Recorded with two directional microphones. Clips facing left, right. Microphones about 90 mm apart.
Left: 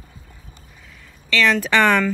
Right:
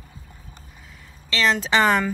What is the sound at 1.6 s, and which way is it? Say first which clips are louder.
Speech: left 2 dB; 20° right (ahead or behind).